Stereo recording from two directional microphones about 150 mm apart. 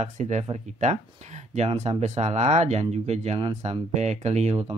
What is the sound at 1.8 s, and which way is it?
Speech, 45° right (ahead or behind).